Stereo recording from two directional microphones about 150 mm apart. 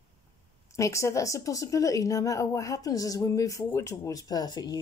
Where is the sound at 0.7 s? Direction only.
20° left (ahead or behind).